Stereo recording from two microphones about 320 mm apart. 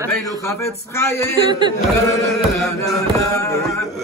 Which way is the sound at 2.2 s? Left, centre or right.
Centre.